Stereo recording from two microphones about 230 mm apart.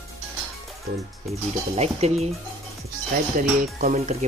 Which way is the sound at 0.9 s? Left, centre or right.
Right.